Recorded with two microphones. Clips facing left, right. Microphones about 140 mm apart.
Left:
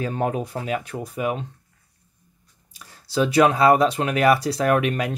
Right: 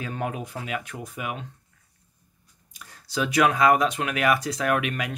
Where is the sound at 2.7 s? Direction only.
30° left (ahead or behind).